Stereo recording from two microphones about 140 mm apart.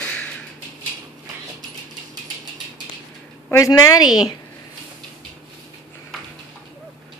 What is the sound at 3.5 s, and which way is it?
Speech, 25° left (ahead or behind).